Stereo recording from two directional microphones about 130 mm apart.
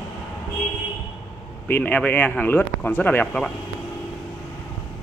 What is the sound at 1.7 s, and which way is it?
A man's voice, 15° left (ahead or behind).